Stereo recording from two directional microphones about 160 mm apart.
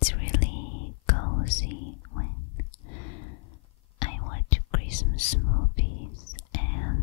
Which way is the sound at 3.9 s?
40° left (ahead or behind).